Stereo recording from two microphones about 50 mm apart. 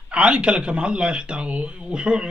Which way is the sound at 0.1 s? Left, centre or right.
Right.